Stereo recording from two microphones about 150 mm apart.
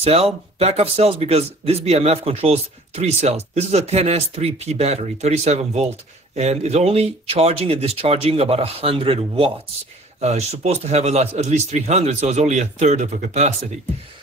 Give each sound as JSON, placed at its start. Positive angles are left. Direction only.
{"t": 0.0, "sound": "a man's voice", "side_deg": -40}